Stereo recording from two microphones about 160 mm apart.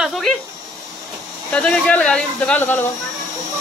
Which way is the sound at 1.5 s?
5° left (ahead or behind).